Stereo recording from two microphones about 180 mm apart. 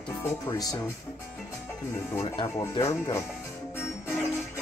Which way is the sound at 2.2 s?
25° left (ahead or behind).